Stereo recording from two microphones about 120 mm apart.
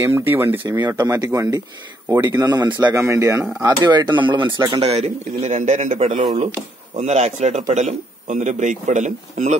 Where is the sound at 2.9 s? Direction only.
25° right (ahead or behind); by 4.6 s 40° right (ahead or behind).